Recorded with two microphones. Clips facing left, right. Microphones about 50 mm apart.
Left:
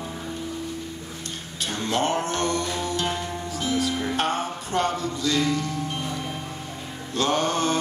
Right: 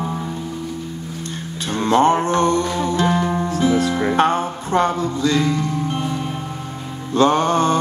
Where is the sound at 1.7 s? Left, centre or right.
Right.